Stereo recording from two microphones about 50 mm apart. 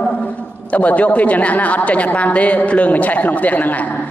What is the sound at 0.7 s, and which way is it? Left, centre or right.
A man's voice, left.